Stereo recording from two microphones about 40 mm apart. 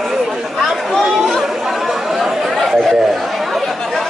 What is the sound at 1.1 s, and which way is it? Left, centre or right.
Chatter, centre.